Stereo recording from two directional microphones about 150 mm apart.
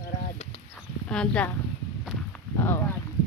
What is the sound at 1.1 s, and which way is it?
Speech, 5° left (ahead or behind).